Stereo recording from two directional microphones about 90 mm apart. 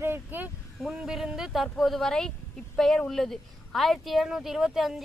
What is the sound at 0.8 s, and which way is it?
A woman's voice, 5° right (ahead or behind).